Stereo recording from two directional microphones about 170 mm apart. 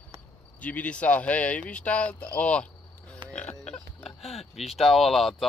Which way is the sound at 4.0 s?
35° left (ahead or behind).